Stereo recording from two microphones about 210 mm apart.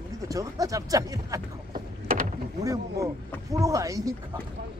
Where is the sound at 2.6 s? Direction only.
15° right (ahead or behind).